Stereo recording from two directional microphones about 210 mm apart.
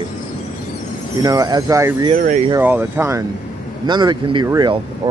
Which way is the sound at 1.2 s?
15° right (ahead or behind).